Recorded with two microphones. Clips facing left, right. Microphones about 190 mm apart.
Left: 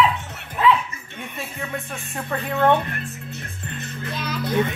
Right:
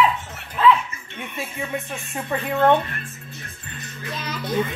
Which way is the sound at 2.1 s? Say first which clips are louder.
Right 1 dB; 10° right (ahead or behind).